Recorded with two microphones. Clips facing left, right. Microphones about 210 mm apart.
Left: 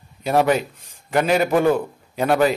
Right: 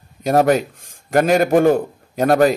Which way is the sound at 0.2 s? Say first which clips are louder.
Right 3 dB; 45° right (ahead or behind).